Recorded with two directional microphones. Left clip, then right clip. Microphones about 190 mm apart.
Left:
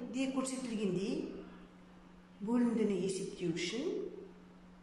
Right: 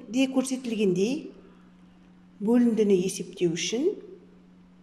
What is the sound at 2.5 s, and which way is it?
A woman's voice, 50° right (ahead or behind).